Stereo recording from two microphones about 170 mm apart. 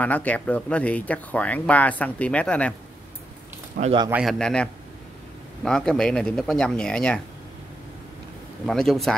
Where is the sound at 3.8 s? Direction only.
60° right (ahead or behind).